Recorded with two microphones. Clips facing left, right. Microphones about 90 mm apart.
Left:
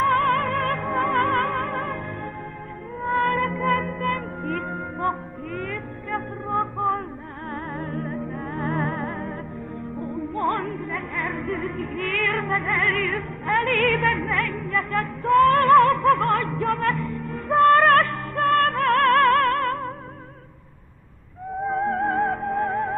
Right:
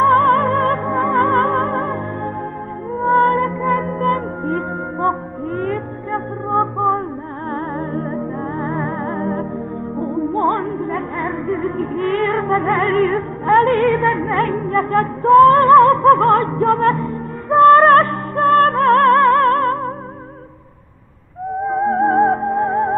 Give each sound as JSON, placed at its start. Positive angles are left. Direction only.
{"t": 0.0, "sound": "music", "side_deg": -35}
{"t": 3.0, "sound": "music", "side_deg": -40}
{"t": 11.7, "sound": "music", "side_deg": -35}
{"t": 21.6, "sound": "music", "side_deg": -25}